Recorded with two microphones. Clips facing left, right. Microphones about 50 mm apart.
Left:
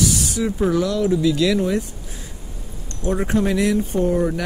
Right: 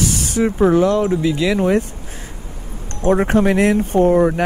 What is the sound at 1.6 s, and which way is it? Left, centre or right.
Speech, right.